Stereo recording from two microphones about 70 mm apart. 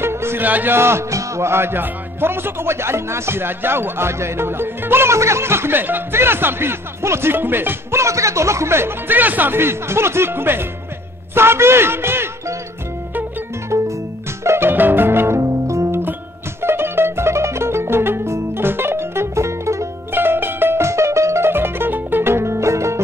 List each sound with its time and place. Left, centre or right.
0.0 s music: right
0.5 s speech: right
13.7 s music: right
14.7 s music: right
15.4 s music: right
16.6 s music: right